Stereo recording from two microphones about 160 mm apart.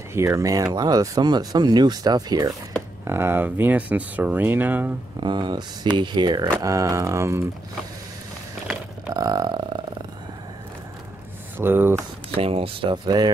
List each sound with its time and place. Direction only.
0.1 s speech: 15° right (ahead or behind)
3.1 s speech: 15° right (ahead or behind)
5.2 s speech: 30° right (ahead or behind)
9.1 s speech: 25° right (ahead or behind)
11.5 s speech: 15° right (ahead or behind)
12.4 s speech: 35° right (ahead or behind)